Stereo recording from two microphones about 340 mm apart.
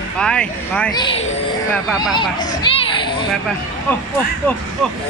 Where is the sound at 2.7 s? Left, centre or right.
Centre.